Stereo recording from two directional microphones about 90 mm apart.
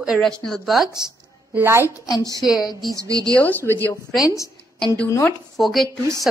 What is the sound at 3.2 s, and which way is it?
Speech, 20° left (ahead or behind).